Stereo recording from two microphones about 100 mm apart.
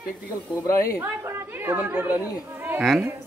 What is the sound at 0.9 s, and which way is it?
Speech, 20° right (ahead or behind).